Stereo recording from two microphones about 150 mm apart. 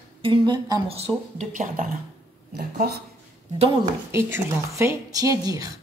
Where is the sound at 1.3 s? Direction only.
55° right (ahead or behind).